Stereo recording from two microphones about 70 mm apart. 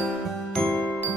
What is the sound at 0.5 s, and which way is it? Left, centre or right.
Music, centre.